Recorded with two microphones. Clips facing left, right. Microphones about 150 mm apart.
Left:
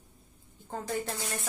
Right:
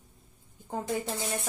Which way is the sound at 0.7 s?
20° right (ahead or behind).